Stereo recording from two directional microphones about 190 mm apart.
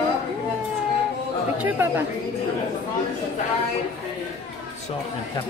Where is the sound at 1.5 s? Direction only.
10° right (ahead or behind).